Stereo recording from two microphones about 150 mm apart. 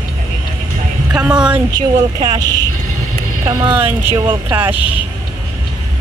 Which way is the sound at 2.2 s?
25° right (ahead or behind).